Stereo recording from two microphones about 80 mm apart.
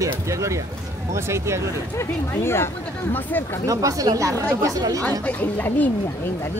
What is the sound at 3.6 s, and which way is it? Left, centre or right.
Speech, right.